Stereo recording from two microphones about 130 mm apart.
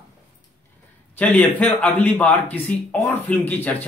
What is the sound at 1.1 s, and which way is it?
Speech, 10° left (ahead or behind).